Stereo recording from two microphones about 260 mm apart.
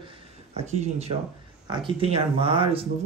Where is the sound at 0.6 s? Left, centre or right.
Right.